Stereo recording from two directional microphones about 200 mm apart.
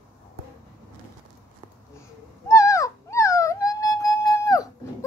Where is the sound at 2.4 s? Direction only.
15° left (ahead or behind).